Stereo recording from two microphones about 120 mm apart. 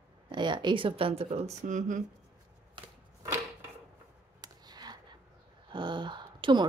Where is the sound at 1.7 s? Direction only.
90° right.